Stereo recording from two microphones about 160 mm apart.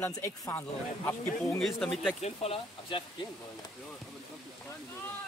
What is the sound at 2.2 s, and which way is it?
Speech, 40° left (ahead or behind).